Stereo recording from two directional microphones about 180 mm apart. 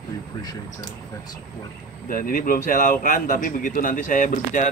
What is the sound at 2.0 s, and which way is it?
A man's voice, 50° left (ahead or behind).